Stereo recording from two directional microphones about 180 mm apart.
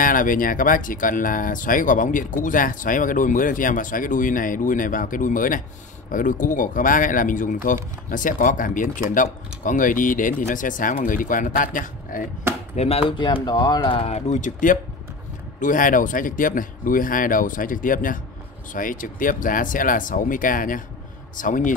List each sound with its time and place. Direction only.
0.0 s speech: 50° left (ahead or behind)
12.7 s speech: 35° left (ahead or behind)